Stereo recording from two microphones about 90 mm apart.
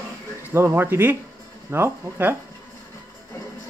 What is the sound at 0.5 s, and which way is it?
Speech, 25° right (ahead or behind).